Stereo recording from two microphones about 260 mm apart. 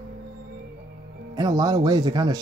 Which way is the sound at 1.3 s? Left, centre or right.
Centre.